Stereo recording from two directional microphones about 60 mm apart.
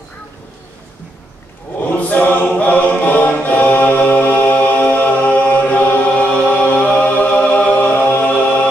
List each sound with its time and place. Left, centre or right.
2.0 s a capella: left
6.4 s music: left